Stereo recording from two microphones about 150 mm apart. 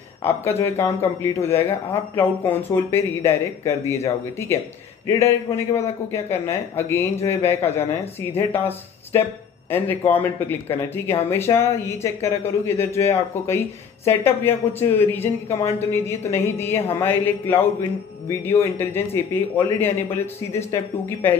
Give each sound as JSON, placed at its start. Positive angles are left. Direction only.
{"t": 0.2, "sound": "a man's voice", "side_deg": 15}